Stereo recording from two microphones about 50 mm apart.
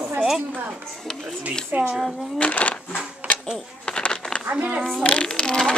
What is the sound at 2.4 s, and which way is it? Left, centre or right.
Speech, left.